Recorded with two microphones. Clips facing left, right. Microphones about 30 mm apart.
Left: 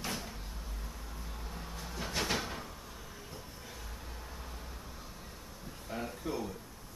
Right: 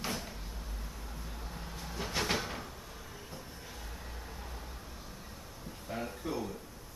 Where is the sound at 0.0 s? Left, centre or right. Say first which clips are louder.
Right 1 dB; centre.